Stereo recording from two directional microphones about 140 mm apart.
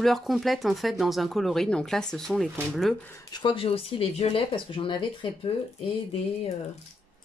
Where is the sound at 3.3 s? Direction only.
40° left (ahead or behind).